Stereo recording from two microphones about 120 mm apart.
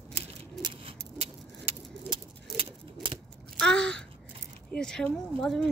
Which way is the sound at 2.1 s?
45° right (ahead or behind).